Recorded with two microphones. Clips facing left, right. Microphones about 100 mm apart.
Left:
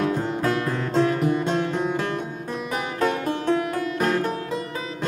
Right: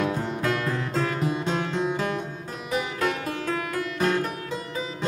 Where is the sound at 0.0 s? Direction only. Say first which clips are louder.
Left 3 dB; 45° left (ahead or behind).